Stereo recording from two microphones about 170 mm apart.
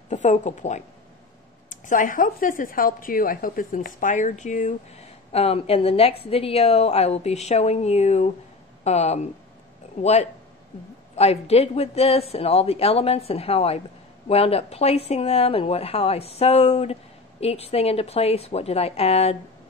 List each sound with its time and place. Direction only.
0.1 s speech: 45° left (ahead or behind)
11.1 s speech: 35° left (ahead or behind)